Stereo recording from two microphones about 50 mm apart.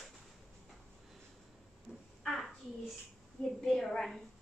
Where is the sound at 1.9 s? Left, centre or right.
Centre.